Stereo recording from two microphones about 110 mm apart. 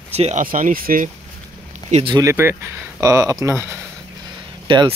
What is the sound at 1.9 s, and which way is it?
Speech, 90° right.